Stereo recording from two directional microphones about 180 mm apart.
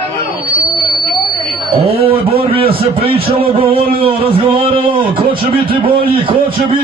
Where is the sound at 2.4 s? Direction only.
30° right (ahead or behind).